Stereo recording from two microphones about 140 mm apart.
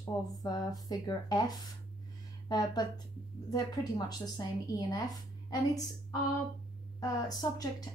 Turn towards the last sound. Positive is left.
turn(degrees=25)  # may be behind; listen again after turning